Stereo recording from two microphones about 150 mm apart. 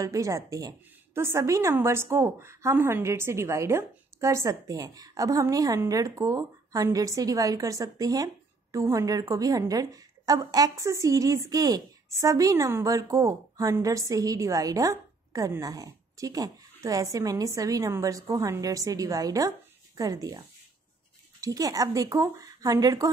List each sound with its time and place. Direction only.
0.0 s a woman's voice: 20° right (ahead or behind)